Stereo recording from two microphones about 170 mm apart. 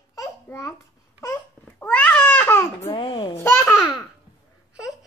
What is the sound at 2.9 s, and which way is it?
Speech, 30° left (ahead or behind).